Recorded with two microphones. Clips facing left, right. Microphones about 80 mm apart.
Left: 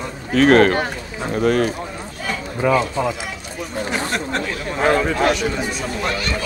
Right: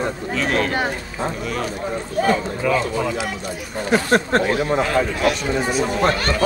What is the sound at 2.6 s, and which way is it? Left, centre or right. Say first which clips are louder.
Speech: left 3 dB; left.